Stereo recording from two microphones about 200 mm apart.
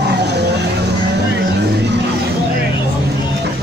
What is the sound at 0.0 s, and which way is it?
Music, 55° right (ahead or behind).